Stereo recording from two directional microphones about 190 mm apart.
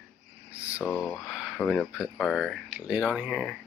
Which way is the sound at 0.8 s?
5° left (ahead or behind).